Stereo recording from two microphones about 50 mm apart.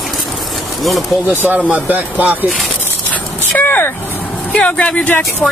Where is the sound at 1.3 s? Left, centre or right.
Right.